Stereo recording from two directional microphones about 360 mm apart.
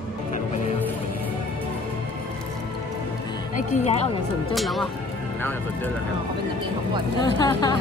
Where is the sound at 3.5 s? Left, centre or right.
Centre.